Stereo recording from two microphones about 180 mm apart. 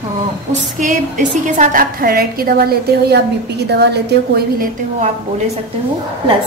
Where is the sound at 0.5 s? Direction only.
45° right (ahead or behind); by 4.6 s 65° right (ahead or behind).